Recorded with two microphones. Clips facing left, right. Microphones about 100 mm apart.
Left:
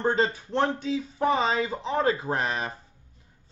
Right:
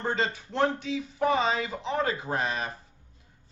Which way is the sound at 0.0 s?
35° left (ahead or behind).